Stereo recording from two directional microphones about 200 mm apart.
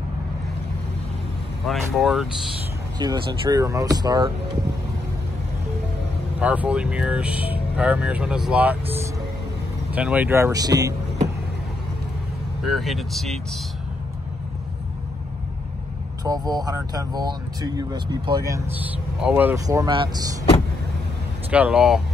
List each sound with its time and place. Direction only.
1.7 s speech: centre (ahead or behind)
3.0 s speech: 20° right (ahead or behind)
6.4 s speech: 5° right (ahead or behind)
12.6 s speech: centre (ahead or behind)
16.3 s speech: 20° right (ahead or behind)
21.5 s speech: 5° right (ahead or behind)